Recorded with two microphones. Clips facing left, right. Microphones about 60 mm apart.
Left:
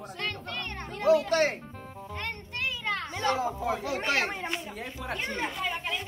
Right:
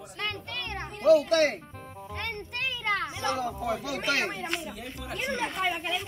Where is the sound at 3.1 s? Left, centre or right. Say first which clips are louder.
Left 2 dB; left.